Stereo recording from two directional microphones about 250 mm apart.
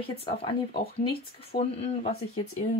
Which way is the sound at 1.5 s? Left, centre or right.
Left.